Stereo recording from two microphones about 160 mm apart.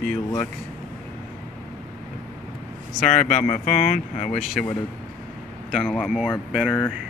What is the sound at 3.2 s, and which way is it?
Speech, 55° left (ahead or behind).